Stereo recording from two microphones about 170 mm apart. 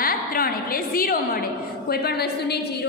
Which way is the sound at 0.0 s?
60° left (ahead or behind).